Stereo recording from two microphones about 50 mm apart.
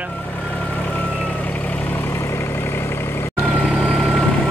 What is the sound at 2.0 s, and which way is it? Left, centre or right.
Vehicle, left.